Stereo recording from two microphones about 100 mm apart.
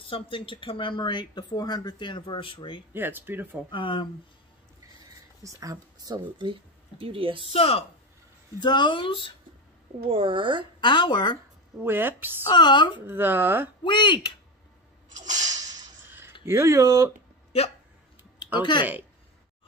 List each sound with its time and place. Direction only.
0.1 s speech: 60° left (ahead or behind)
2.9 s speech: 20° right (ahead or behind)
3.7 s speech: 55° left (ahead or behind)
5.4 s speech: 35° right (ahead or behind); by 7.4 s 60° right (ahead or behind)
7.5 s speech: 75° left (ahead or behind)
8.5 s speech: 50° left (ahead or behind)
10.0 s speech: 65° right (ahead or behind)
10.8 s speech: 50° left (ahead or behind)
11.8 s speech: 20° right (ahead or behind)
12.4 s speech: 50° left (ahead or behind)
13.0 s speech: 20° right (ahead or behind)
13.8 s speech: 50° left (ahead or behind)
16.4 s speech: 30° right (ahead or behind)
18.6 s speech: 50° left (ahead or behind)